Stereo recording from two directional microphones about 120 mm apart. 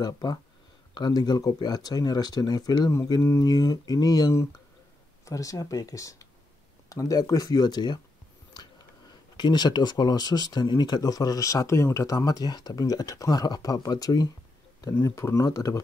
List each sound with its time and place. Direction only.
0.0 s speech: 35° left (ahead or behind)